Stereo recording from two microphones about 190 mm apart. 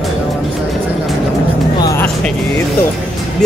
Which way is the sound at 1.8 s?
15° left (ahead or behind).